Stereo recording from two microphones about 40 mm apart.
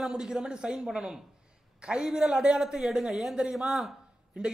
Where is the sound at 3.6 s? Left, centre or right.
Centre.